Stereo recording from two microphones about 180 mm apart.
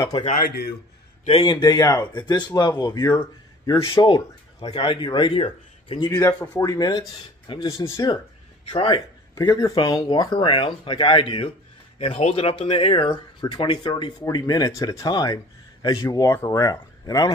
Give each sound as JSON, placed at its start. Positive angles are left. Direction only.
{"t": 0.4, "sound": "a man's voice", "side_deg": 60}
{"t": 1.2, "sound": "speech", "side_deg": 30}
{"t": 6.1, "sound": "speech", "side_deg": 15}